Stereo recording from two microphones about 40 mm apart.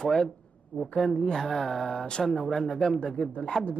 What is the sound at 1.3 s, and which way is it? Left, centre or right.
A woman's voice, centre.